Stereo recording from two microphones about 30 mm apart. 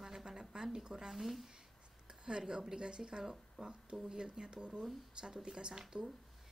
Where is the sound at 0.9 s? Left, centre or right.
Centre.